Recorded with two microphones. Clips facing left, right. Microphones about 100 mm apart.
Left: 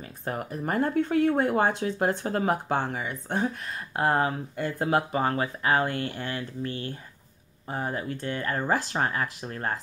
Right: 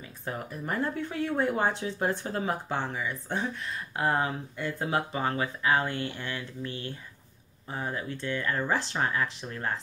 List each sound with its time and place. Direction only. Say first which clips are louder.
0.0 s a sound: left 3 dB; 55° left (ahead or behind)
0.7 s speech: left 6 dB; 50° left (ahead or behind)
3.9 s speech: left 3 dB; 40° left (ahead or behind)